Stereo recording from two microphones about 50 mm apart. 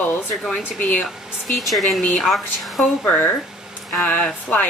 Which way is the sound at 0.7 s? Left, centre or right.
Left.